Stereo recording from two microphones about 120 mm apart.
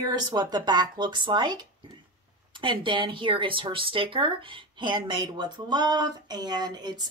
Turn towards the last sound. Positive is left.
turn(degrees=-35)  # may be behind; listen again after turning